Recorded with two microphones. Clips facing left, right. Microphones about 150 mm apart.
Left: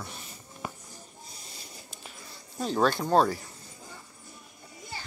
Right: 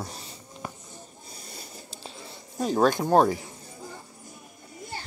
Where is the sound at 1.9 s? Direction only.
30° right (ahead or behind).